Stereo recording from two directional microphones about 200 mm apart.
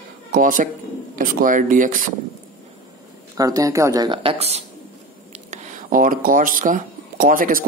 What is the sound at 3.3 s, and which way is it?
Speech, 15° right (ahead or behind).